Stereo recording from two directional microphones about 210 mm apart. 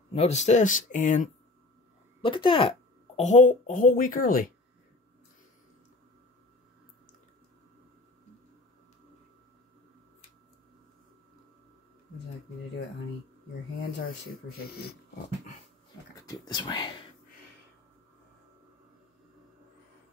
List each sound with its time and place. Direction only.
0.1 s speech: 30° left (ahead or behind)
2.2 s speech: 25° left (ahead or behind)
3.2 s speech: 35° left (ahead or behind)
13.7 s speech: 55° left (ahead or behind)
16.3 s speech: 20° left (ahead or behind)